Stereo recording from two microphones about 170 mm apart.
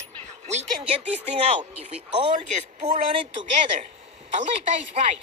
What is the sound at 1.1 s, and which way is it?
Speech, 40° right (ahead or behind).